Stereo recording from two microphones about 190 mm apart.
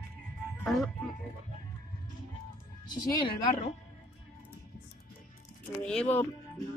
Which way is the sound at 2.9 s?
20° left (ahead or behind).